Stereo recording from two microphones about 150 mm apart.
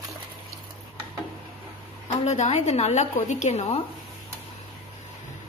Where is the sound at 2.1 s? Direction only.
45° left (ahead or behind).